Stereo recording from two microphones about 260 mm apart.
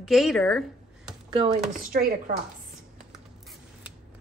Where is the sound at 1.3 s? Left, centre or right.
Right.